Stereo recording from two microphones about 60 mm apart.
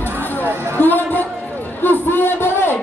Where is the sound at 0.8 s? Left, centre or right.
Left.